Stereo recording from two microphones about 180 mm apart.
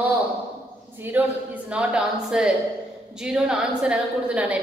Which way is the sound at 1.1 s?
10° right (ahead or behind).